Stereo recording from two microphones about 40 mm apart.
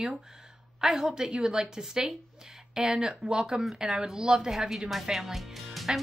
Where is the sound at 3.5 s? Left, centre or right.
Centre.